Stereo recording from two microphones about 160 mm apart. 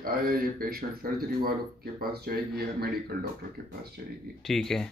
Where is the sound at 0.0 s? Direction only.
65° right (ahead or behind).